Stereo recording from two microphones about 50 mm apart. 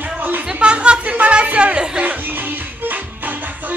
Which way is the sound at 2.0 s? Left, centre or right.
Right.